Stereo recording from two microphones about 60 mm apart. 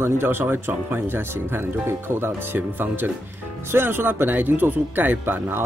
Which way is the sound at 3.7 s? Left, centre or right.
Right.